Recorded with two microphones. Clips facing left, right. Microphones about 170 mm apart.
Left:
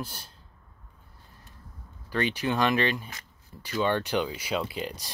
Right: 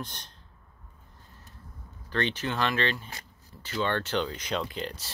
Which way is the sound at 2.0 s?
10° left (ahead or behind).